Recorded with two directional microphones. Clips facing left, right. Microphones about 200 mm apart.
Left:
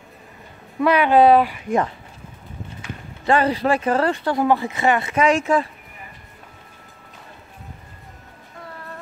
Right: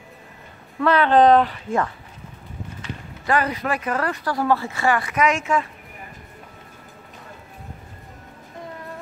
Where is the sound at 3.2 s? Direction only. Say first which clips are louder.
Left 4 dB; 30° left (ahead or behind).